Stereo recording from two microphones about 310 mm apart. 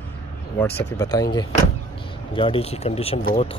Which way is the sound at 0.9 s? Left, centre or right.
Centre.